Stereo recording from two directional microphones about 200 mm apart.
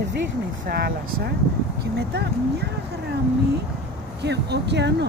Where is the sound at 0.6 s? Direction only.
50° right (ahead or behind).